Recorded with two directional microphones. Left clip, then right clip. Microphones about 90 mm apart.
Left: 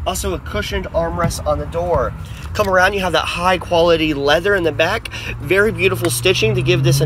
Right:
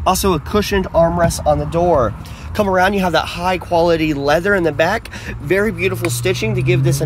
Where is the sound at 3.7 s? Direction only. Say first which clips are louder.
Right 1 dB; 45° right (ahead or behind).